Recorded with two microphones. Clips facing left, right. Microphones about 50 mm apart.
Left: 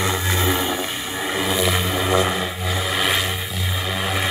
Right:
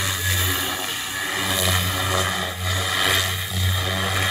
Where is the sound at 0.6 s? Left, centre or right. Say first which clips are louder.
Left 3 dB; centre.